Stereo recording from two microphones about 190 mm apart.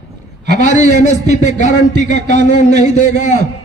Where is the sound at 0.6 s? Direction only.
40° left (ahead or behind).